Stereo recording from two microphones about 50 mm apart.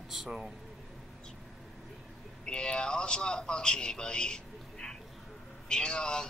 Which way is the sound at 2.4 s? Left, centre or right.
Centre.